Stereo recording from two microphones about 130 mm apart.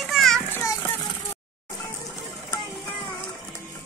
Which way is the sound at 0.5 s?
25° left (ahead or behind).